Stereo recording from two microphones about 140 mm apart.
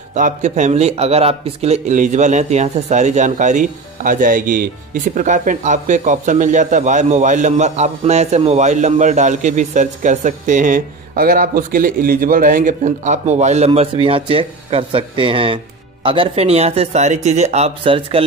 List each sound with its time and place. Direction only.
0.1 s a man's voice: 60° right (ahead or behind); by 4.6 s 75° right (ahead or behind)
5.1 s a man's voice: 65° right (ahead or behind)
14.0 s speech: 40° right (ahead or behind)